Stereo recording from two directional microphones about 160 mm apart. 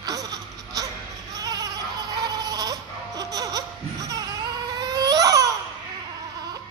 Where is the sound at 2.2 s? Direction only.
25° right (ahead or behind).